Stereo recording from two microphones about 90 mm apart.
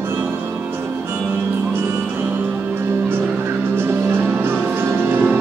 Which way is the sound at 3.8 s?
25° right (ahead or behind).